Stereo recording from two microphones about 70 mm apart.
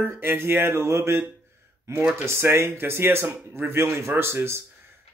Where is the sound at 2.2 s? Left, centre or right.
Right.